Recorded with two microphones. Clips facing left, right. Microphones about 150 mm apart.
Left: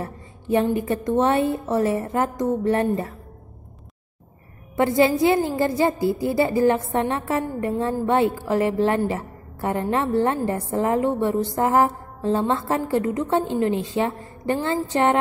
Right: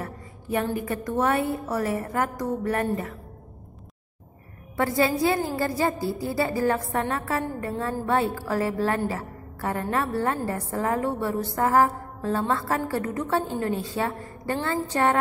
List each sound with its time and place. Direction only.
0.0 s a woman's voice: 25° left (ahead or behind)
4.7 s a woman's voice: 20° left (ahead or behind)